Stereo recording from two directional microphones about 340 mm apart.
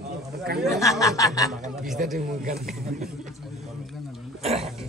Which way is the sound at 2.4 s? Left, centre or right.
Right.